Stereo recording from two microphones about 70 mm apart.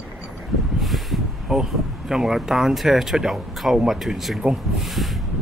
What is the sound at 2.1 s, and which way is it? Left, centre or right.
Speech, centre.